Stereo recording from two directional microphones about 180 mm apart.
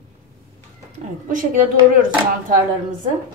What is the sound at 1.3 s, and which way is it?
Speech, 45° right (ahead or behind).